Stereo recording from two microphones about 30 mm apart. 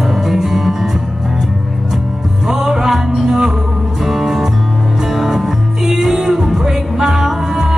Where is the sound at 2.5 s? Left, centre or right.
Centre.